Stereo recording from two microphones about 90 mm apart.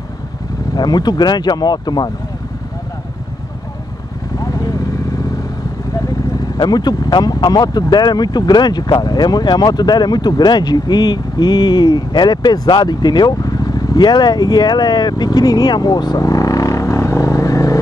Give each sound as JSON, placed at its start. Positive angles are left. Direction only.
{"t": 0.7, "sound": "speech", "side_deg": 50}
{"t": 4.4, "sound": "vehicle", "side_deg": 40}
{"t": 6.5, "sound": "speech", "side_deg": 50}